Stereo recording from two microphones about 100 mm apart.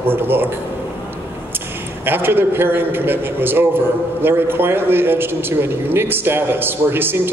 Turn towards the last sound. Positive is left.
turn(degrees=-20)  # may be behind; listen again after turning